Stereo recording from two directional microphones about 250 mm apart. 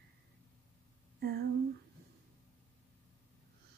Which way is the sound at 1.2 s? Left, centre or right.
Right.